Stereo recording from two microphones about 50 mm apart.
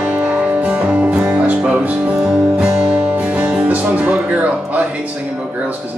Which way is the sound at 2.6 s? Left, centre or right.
Centre.